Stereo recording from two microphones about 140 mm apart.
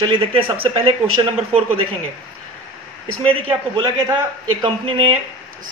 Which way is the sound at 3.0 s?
40° right (ahead or behind).